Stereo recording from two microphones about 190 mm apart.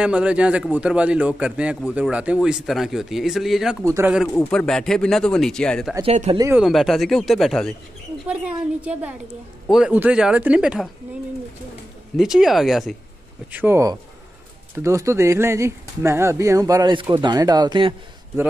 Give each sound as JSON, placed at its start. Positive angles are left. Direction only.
{"t": 0.0, "sound": "a man's voice", "side_deg": -5}
{"t": 3.8, "sound": "speech", "side_deg": -15}
{"t": 4.4, "sound": "a man's voice", "side_deg": 5}
{"t": 6.0, "sound": "speech", "side_deg": -35}
{"t": 6.3, "sound": "speech", "side_deg": -15}
{"t": 6.6, "sound": "a man's voice", "side_deg": 0}
{"t": 12.2, "sound": "a man's voice", "side_deg": 0}